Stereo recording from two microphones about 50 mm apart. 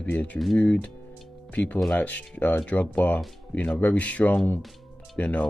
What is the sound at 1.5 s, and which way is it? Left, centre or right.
Speech, left.